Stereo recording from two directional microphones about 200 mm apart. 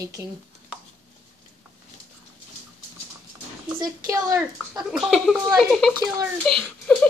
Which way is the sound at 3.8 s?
15° right (ahead or behind).